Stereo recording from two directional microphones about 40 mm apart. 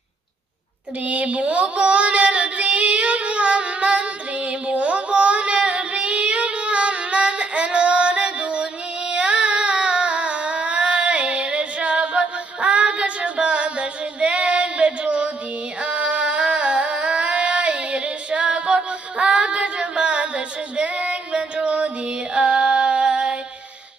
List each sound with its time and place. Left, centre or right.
1.0 s female singing: right
15.8 s a sound: right
19.1 s female singing: right
21.6 s music: right